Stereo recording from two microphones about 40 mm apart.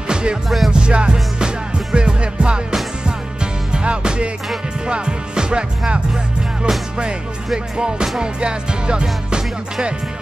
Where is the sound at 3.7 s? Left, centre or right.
Right.